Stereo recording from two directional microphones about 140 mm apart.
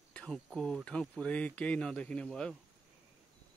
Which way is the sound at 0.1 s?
5° left (ahead or behind).